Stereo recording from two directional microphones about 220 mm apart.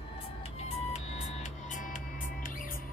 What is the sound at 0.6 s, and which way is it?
Music, 30° left (ahead or behind).